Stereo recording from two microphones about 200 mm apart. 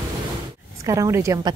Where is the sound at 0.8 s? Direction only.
15° right (ahead or behind).